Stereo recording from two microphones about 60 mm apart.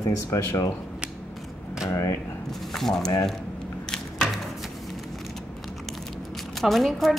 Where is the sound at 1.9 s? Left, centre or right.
Left.